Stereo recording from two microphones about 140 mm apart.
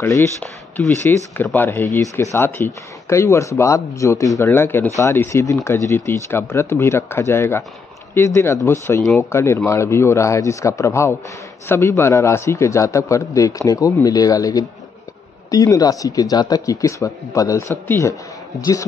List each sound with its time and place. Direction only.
0.0 s speech: 20° left (ahead or behind)